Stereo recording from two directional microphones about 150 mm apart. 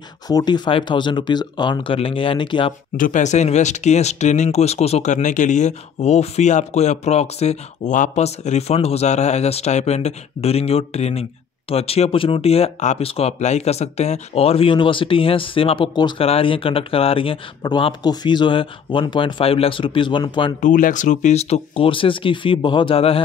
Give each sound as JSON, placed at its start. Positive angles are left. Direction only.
{"t": 0.3, "sound": "speech", "side_deg": 25}
{"t": 3.0, "sound": "speech", "side_deg": 55}
{"t": 20.6, "sound": "speech", "side_deg": 60}